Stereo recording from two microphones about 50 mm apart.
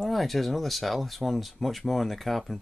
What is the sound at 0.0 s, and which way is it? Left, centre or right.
Speech, centre.